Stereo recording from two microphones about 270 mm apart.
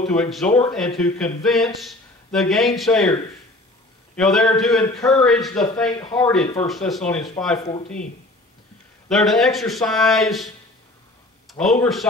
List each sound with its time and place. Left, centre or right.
0.0 s speech: centre
7.5 s speech: left
9.1 s speech: centre